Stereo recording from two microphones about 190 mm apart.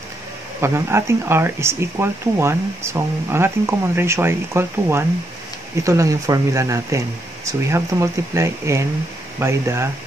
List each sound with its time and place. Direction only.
0.6 s speech: 15° right (ahead or behind)